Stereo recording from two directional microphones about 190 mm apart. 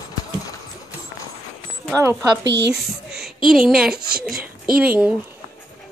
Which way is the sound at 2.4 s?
65° right (ahead or behind).